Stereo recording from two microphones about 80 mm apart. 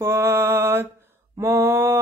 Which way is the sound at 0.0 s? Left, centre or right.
Right.